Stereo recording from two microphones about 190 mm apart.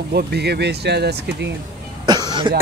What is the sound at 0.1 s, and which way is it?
Speech, 60° right (ahead or behind).